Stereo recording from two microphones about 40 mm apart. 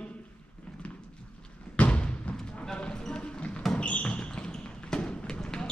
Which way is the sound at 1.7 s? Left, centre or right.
Left.